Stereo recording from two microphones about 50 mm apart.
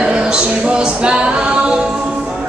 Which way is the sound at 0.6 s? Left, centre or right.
Centre.